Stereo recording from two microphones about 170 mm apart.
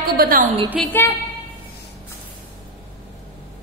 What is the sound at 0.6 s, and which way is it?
Speech, 10° left (ahead or behind).